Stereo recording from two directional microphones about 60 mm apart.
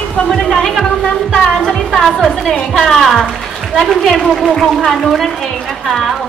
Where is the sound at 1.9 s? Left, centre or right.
Centre.